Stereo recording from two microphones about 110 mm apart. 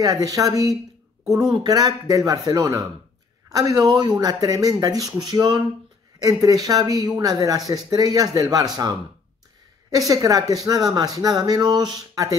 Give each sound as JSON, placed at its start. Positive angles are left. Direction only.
{"t": 0.0, "sound": "speech", "side_deg": -35}
{"t": 9.8, "sound": "speech", "side_deg": -35}